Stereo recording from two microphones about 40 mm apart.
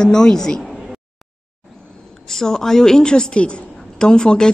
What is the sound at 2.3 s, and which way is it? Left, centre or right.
A woman's voice, centre.